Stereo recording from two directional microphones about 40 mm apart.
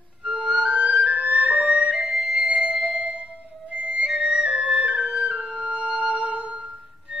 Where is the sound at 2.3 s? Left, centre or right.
Right.